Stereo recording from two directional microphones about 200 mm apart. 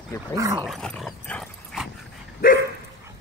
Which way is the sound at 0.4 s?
15° right (ahead or behind).